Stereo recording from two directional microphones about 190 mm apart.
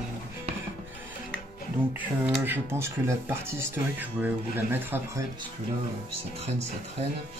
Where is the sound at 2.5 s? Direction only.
15° right (ahead or behind).